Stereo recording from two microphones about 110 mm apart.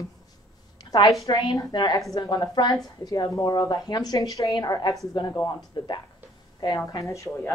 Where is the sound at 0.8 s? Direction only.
40° left (ahead or behind).